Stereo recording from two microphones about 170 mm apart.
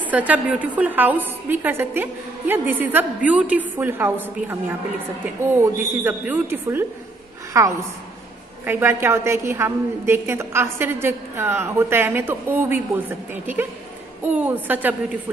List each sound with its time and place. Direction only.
0.0 s a woman's voice: 10° right (ahead or behind)